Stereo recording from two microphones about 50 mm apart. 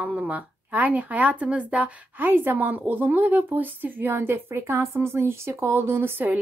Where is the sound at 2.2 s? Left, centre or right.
Right.